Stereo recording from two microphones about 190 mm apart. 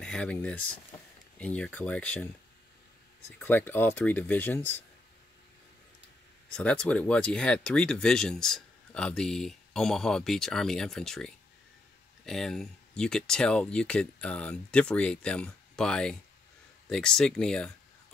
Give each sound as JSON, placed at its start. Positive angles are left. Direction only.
{"t": 0.0, "sound": "speech", "side_deg": 5}
{"t": 3.3, "sound": "speech", "side_deg": 10}
{"t": 6.5, "sound": "speech", "side_deg": 5}